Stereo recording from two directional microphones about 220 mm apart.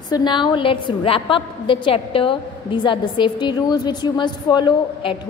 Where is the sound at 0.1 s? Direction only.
20° left (ahead or behind).